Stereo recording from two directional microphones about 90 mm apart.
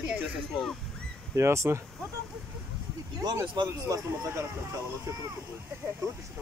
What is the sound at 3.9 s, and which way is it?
Speech, 35° right (ahead or behind).